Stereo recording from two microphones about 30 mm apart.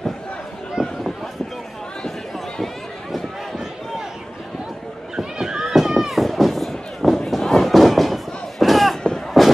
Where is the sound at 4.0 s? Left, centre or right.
Centre.